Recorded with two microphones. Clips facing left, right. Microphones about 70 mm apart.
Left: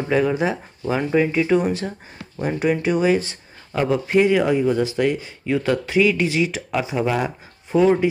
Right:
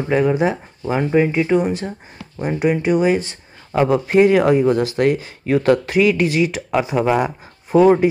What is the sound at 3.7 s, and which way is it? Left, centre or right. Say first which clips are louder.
Speech: right 5 dB; right.